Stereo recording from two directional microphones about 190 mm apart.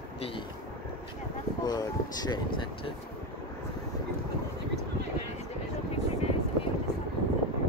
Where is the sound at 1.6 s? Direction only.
20° left (ahead or behind).